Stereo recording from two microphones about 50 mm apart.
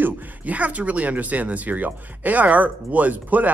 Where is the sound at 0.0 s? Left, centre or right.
Right.